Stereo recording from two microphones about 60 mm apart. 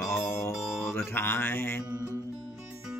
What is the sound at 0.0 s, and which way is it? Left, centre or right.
Mantra, left.